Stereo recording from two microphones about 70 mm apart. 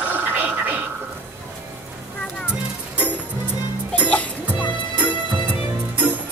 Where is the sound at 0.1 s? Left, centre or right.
Right.